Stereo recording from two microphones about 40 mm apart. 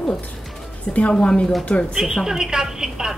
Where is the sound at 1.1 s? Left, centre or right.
Left.